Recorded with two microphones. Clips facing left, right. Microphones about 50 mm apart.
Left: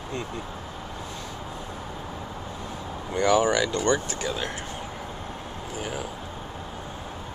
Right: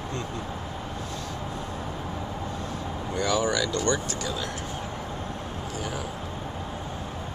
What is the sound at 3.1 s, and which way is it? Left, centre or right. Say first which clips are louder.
Speech: left 4 dB; left.